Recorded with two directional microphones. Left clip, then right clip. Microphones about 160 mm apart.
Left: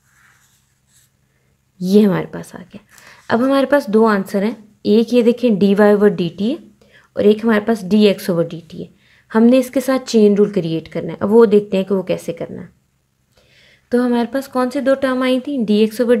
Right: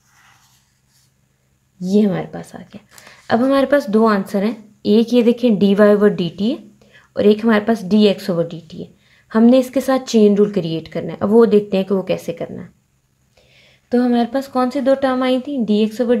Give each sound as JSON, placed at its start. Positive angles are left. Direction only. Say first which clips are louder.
{"t": 0.1, "sound": "a sound", "louder": "right 1 dB", "side_deg": -5}
{"t": 1.8, "sound": "a woman's voice", "louder": "left 3 dB", "side_deg": 45}
{"t": 13.4, "sound": "speech", "louder": "left 1 dB", "side_deg": 25}